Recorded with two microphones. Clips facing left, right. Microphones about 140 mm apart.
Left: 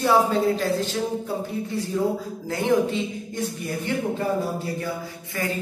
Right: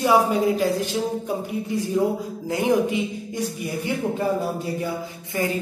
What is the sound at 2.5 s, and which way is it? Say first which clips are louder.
Speech: right 1 dB; 15° right (ahead or behind).